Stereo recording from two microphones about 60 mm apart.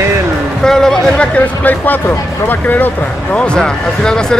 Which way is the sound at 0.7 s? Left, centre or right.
Centre.